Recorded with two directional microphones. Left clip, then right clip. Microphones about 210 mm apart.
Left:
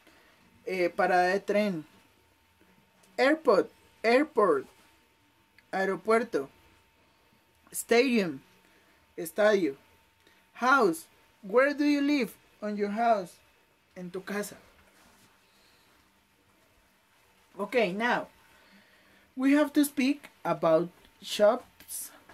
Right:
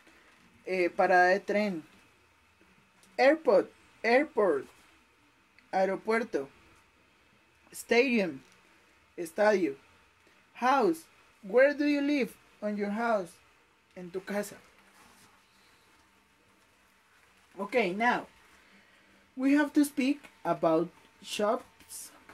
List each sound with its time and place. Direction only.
0.7 s speech: 25° left (ahead or behind)
3.2 s speech: 25° left (ahead or behind)
5.7 s speech: 25° left (ahead or behind)
7.7 s speech: 25° left (ahead or behind)
17.6 s speech: 20° left (ahead or behind)
19.4 s speech: 25° left (ahead or behind)